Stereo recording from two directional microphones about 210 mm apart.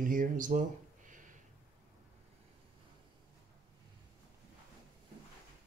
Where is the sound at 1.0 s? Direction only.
40° right (ahead or behind).